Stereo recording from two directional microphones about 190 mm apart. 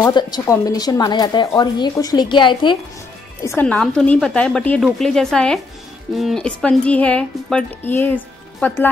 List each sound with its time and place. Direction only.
0.1 s speech: 20° left (ahead or behind)
3.4 s a woman's voice: 10° left (ahead or behind)